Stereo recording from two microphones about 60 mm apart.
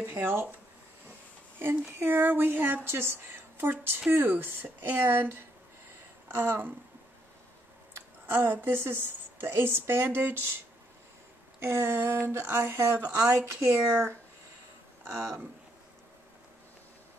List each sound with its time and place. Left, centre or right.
0.0 s speech: right
1.6 s speech: right
7.9 s a sound: right
8.6 s speech: right
11.6 s speech: right
15.1 s speech: right